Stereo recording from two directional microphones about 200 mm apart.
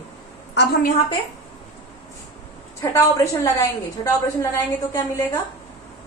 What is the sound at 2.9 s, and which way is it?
A woman's voice, 15° left (ahead or behind).